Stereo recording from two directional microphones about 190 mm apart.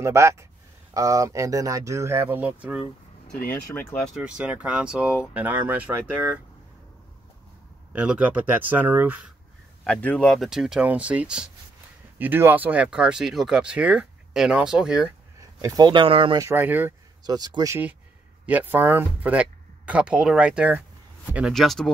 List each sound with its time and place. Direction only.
0.0 s speech: 15° right (ahead or behind)
3.3 s speech: 50° left (ahead or behind)
3.7 s speech: 5° left (ahead or behind)
7.9 s speech: 5° right (ahead or behind)
9.8 s speech: 5° left (ahead or behind)
15.6 s speech: 20° right (ahead or behind)
16.4 s speech: 10° right (ahead or behind)
17.2 s speech: 20° right (ahead or behind); by 21.9 s centre (ahead or behind)